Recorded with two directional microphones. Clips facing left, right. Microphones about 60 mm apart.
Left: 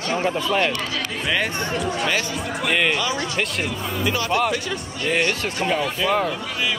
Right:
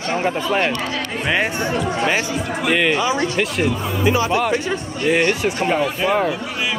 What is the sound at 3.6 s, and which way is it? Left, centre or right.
Speech, right.